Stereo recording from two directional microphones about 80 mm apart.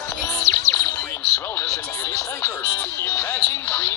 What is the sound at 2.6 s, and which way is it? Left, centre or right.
Speech, left.